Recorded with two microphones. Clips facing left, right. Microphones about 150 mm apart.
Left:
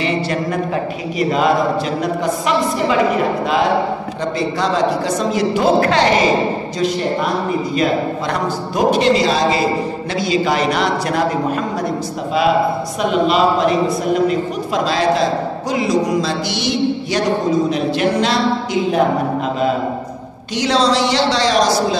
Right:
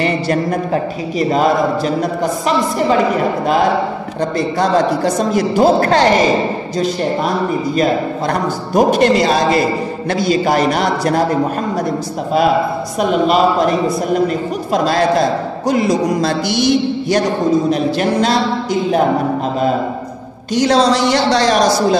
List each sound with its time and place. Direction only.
0.0 s a man's voice: 45° right (ahead or behind)
4.4 s a man's voice: 50° right (ahead or behind)
8.3 s a man's voice: 50° right (ahead or behind)
13.1 s a man's voice: 45° right (ahead or behind)
17.6 s a woman's voice: 40° right (ahead or behind)
20.5 s a man's voice: 45° right (ahead or behind)